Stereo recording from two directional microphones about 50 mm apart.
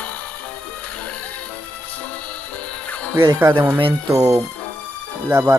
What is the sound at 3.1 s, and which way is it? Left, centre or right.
Speech, right.